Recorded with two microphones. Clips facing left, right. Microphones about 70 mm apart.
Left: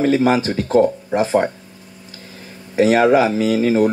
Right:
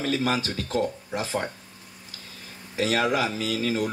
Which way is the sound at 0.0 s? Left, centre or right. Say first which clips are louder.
Left 10 dB; left.